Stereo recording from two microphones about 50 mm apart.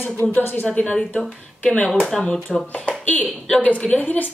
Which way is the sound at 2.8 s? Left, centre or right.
Left.